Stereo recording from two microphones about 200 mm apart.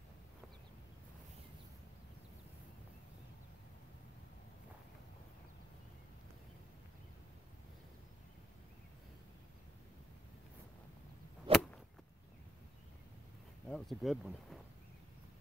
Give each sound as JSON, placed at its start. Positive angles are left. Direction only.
{"t": 11.5, "sound": "whip", "side_deg": -25}
{"t": 13.7, "sound": "speech", "side_deg": 0}